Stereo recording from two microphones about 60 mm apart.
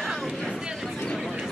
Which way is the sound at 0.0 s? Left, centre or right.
Centre.